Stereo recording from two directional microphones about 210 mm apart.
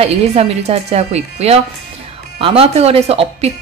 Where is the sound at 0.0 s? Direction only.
30° right (ahead or behind).